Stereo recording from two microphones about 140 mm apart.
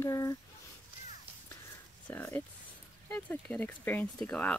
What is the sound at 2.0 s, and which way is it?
Speech, 10° left (ahead or behind).